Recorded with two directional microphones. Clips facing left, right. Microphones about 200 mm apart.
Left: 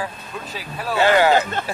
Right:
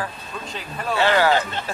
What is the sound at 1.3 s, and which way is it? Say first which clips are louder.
Speech: left 3 dB; 50° left (ahead or behind).